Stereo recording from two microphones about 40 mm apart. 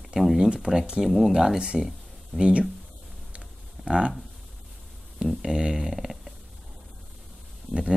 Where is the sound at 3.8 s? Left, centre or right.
Right.